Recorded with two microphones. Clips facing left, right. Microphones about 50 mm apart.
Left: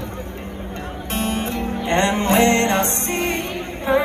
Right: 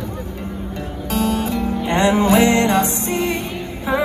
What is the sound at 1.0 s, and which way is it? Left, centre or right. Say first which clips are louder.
Music: right 4 dB; left.